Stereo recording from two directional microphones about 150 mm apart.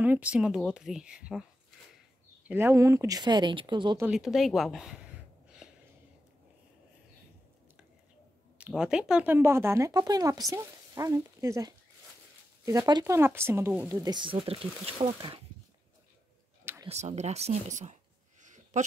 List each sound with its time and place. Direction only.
0.0 s speech: 10° right (ahead or behind)
2.4 s speech: 15° right (ahead or behind); by 4.0 s 30° right (ahead or behind)
4.0 s speech: 5° right (ahead or behind)
5.6 s a sound: 5° right (ahead or behind)
8.5 s speech: 5° right (ahead or behind)
14.0 s speech: 30° right (ahead or behind)
16.8 s speech: 45° right (ahead or behind)
18.4 s a sound: 55° right (ahead or behind)